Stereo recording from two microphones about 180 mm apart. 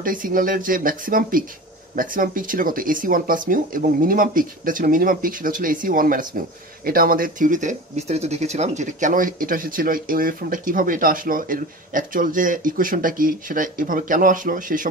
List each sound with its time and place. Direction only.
0.0 s speech: 50° right (ahead or behind)